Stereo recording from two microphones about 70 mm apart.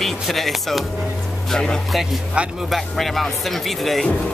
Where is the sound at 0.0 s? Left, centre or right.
Centre.